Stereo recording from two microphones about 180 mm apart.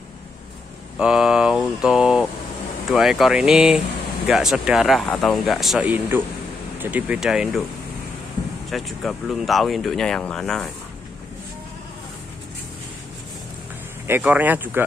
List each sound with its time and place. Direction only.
0.9 s speech: 5° right (ahead or behind)
8.6 s speech: centre (ahead or behind)
14.0 s speech: 10° right (ahead or behind)